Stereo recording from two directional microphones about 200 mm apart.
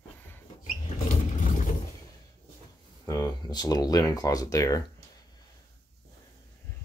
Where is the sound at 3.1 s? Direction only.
15° left (ahead or behind).